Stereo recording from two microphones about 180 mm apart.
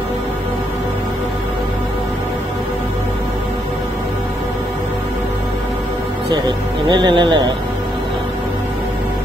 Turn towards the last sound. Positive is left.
turn(degrees=-25)  # may be behind; listen again after turning